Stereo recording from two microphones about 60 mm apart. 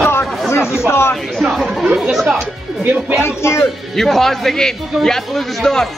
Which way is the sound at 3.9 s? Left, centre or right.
Centre.